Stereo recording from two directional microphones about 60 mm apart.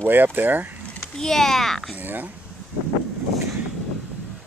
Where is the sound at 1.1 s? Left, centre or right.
Centre.